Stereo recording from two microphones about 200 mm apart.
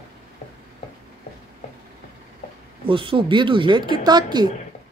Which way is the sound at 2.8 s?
25° right (ahead or behind).